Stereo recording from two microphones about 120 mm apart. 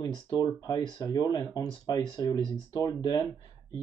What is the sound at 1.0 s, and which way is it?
Speech, 35° left (ahead or behind).